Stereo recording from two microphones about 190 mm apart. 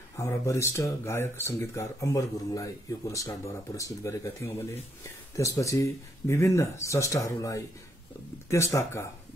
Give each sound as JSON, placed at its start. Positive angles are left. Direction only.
{"t": 0.2, "sound": "speech", "side_deg": 15}